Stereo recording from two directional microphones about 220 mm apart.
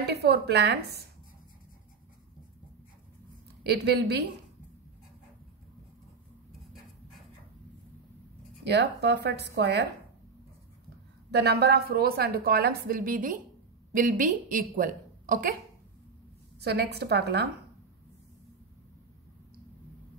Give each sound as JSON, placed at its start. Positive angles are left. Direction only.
{"t": 0.0, "sound": "a woman's voice", "side_deg": -50}
{"t": 3.6, "sound": "a woman's voice", "side_deg": -50}
{"t": 8.6, "sound": "a woman's voice", "side_deg": -50}
{"t": 11.3, "sound": "a woman's voice", "side_deg": -50}
{"t": 16.6, "sound": "a woman's voice", "side_deg": -50}